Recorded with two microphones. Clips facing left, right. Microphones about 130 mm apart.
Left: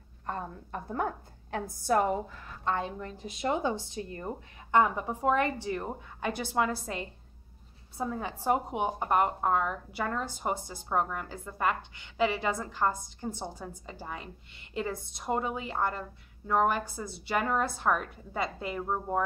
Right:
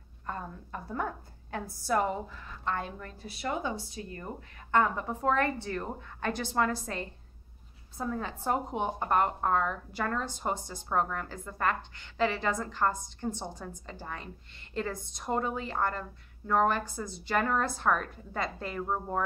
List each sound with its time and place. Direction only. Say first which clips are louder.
0.3 s a woman's voice: left 2 dB; 35° left (ahead or behind)
1.9 s speech: left 2 dB; 45° left (ahead or behind)
2.6 s a woman's voice: left 3 dB; 20° left (ahead or behind)
4.6 s speech: left 2 dB; 15° left (ahead or behind)
8.0 s speech: left 1 dB; 15° left (ahead or behind)